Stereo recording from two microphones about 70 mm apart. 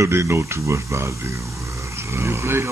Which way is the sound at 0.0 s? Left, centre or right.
Right.